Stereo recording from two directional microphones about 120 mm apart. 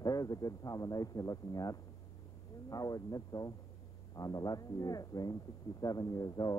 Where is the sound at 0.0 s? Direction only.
30° left (ahead or behind).